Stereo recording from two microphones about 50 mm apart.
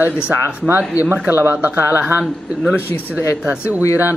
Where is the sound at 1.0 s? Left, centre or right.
Left.